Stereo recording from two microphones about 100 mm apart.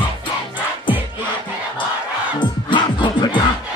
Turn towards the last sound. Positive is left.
turn(degrees=55)  # may be behind; listen again after turning